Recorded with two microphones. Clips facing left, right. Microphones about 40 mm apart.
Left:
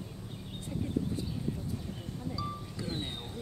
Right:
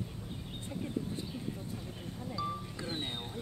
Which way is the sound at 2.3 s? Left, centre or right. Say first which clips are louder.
Right 5 dB; right.